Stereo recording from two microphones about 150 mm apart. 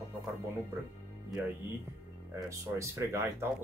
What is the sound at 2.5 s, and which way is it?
Speech, 20° right (ahead or behind).